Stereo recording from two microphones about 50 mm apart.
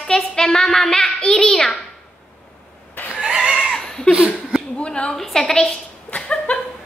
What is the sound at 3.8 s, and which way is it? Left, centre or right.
Laughter, centre.